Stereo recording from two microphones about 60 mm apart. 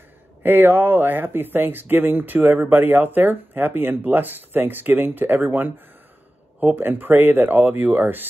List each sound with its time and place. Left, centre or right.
0.4 s speech: right